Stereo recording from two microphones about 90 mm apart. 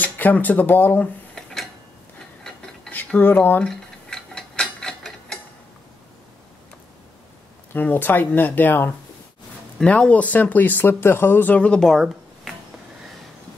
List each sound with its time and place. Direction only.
0.0 s speech: 20° left (ahead or behind)
1.3 s a sound: 5° left (ahead or behind)
2.4 s ratchet: 5° left (ahead or behind)
2.9 s speech: 20° left (ahead or behind)
3.6 s mechanisms: 5° left (ahead or behind)
7.7 s speech: 20° left (ahead or behind); by 12.5 s centre (ahead or behind)